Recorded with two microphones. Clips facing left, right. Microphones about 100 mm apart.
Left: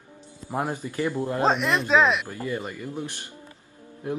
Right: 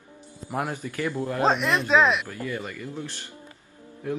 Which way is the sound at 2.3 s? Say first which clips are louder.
Left 2 dB; 25° left (ahead or behind).